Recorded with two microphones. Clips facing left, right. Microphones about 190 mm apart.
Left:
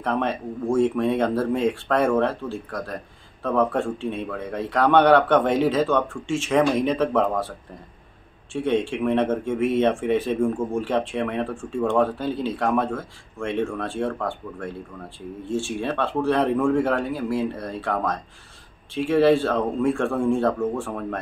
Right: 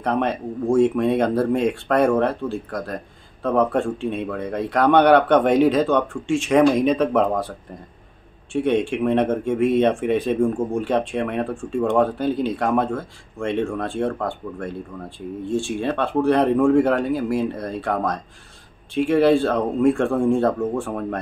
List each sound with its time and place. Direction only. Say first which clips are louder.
0.0 s speech: right 3 dB; 15° right (ahead or behind)
8.5 s speech: right 3 dB; 15° right (ahead or behind)